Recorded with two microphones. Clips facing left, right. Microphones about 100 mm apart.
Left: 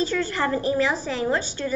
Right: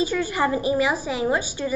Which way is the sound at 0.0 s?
10° right (ahead or behind).